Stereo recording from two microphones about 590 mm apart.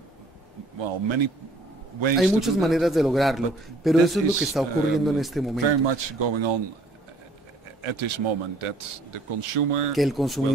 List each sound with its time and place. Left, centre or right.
0.7 s a man's voice: right
2.1 s a man's voice: centre
5.6 s a man's voice: right
7.8 s a man's voice: right
9.9 s a man's voice: centre